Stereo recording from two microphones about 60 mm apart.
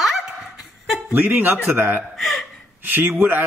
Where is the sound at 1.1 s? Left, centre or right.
Right.